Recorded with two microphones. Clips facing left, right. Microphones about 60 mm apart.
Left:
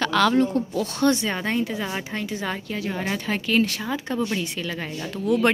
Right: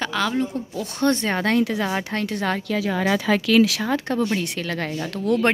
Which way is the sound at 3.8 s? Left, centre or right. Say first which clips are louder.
Right 4 dB; right.